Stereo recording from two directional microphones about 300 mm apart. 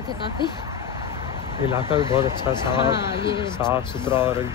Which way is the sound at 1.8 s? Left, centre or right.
Centre.